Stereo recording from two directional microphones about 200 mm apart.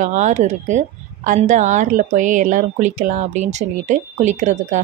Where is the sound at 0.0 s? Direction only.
35° right (ahead or behind).